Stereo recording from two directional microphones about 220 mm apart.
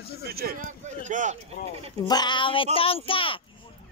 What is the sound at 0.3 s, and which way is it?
Speech, 45° right (ahead or behind).